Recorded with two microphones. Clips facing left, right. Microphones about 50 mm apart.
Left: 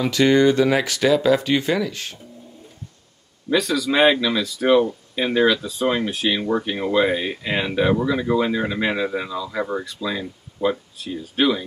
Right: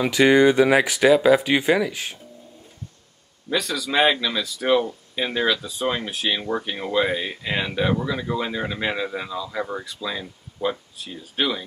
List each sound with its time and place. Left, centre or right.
0.0 s speech: centre
3.4 s speech: centre